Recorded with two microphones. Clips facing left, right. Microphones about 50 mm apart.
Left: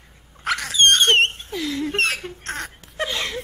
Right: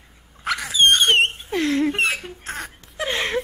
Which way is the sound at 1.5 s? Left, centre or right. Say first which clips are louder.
Right 6 dB; right.